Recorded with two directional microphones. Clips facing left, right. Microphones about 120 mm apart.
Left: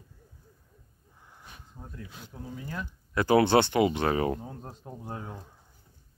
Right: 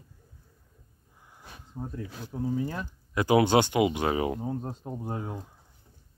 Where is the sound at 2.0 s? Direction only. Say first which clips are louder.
Right 6 dB; 40° right (ahead or behind).